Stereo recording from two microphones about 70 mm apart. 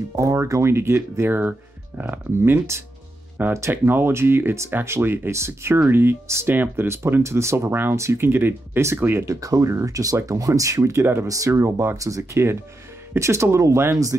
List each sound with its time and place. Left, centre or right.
0.2 s speech: right
3.4 s speech: right
9.3 s speech: right
11.2 s speech: right